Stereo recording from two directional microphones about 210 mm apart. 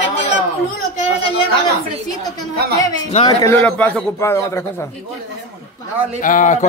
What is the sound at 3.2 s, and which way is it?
A man's voice, 15° left (ahead or behind).